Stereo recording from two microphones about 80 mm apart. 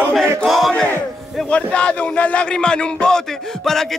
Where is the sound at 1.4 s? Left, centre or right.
Centre.